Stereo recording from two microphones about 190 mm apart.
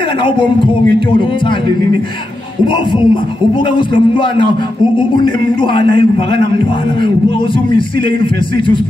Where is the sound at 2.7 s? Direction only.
25° left (ahead or behind).